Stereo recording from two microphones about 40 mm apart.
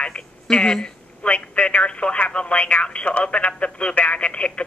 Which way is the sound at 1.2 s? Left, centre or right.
Left.